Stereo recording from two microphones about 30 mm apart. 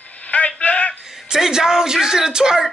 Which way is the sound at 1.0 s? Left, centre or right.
Right.